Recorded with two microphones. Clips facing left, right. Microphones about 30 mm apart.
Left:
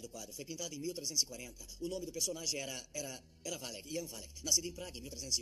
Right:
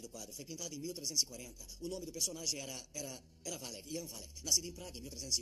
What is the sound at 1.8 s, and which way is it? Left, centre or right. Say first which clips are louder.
Speech: left 2 dB; left.